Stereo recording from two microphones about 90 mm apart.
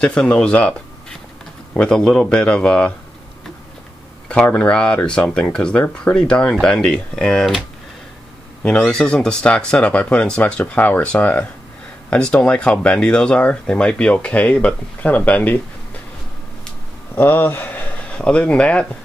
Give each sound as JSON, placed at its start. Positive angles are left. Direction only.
{"t": 0.0, "sound": "speech", "side_deg": 10}
{"t": 4.3, "sound": "speech", "side_deg": 15}
{"t": 8.6, "sound": "speech", "side_deg": 10}
{"t": 17.1, "sound": "speech", "side_deg": 20}